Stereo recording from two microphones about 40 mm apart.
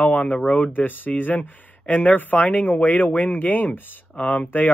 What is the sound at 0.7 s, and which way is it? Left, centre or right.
Speech, left.